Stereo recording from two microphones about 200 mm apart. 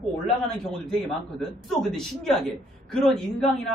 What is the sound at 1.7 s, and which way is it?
A man's voice, centre (ahead or behind).